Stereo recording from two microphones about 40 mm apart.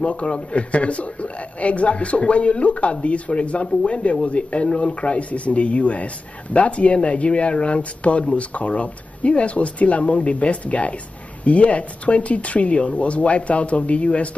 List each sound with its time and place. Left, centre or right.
0.0 s a man's voice: left